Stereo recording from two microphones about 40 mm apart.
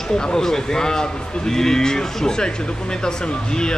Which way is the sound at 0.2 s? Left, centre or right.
Centre.